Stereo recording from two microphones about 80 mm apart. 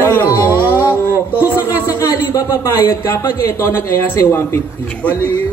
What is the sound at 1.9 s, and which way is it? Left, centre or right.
Speech, left.